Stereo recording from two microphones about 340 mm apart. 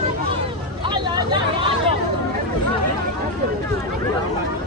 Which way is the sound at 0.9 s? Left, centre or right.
Centre.